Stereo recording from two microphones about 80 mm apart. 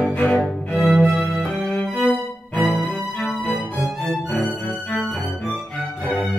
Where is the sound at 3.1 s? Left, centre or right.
Centre.